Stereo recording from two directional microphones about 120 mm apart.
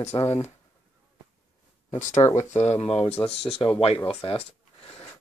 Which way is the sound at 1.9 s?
90° left.